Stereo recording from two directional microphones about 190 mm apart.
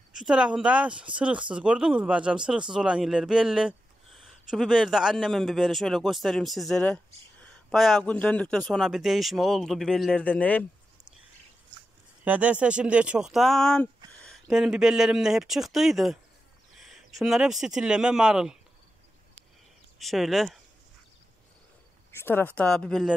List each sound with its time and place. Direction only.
0.1 s speech: 5° right (ahead or behind)
12.3 s speech: 5° right (ahead or behind)
20.0 s speech: centre (ahead or behind)
22.1 s speech: 10° left (ahead or behind)